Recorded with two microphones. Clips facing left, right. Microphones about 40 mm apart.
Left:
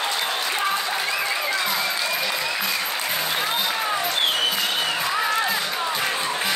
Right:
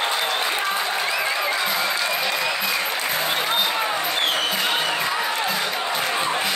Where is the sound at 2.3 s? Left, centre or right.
Centre.